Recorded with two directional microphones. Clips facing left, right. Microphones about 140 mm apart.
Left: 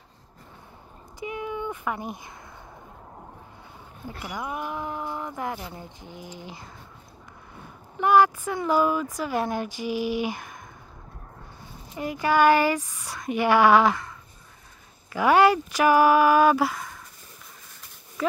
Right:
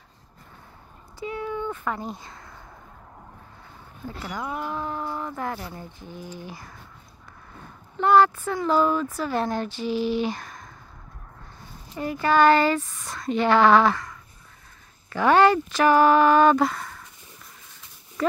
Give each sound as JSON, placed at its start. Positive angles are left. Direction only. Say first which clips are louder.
{"t": 1.2, "sound": "a sound", "louder": "right 2 dB", "side_deg": 15}
{"t": 4.2, "sound": "speech", "louder": "right 1 dB", "side_deg": 15}
{"t": 11.9, "sound": "speech", "louder": "right 1 dB", "side_deg": 15}
{"t": 15.1, "sound": "speech", "louder": "right 1 dB", "side_deg": 10}